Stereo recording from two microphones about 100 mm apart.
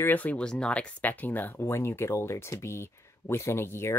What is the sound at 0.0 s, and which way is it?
Speech, 15° left (ahead or behind).